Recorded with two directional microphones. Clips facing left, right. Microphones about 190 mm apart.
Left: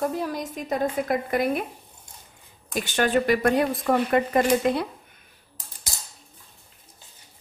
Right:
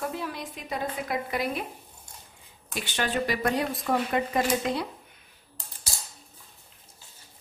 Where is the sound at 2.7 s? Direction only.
45° left (ahead or behind).